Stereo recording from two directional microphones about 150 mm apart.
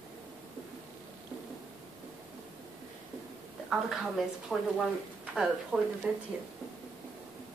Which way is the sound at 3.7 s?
Centre (ahead or behind).